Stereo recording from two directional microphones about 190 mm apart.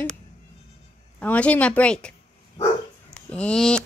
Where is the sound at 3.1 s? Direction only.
5° left (ahead or behind).